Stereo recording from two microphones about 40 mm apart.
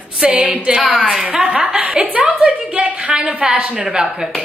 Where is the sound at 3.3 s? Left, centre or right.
Centre.